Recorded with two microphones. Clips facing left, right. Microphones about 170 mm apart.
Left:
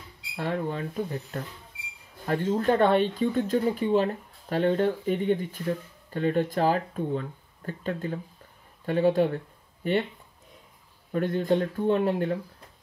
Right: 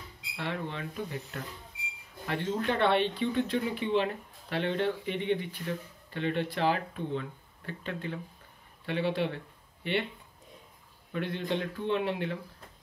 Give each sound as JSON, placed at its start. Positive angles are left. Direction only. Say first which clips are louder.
{"t": 0.4, "sound": "speech", "louder": "left 6 dB", "side_deg": 45}
{"t": 11.1, "sound": "speech", "louder": "left 8 dB", "side_deg": 45}